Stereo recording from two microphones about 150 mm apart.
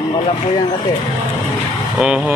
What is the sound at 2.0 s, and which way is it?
Speech, 5° right (ahead or behind).